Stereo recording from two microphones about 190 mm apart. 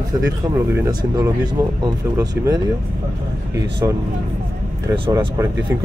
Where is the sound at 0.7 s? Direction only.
20° right (ahead or behind).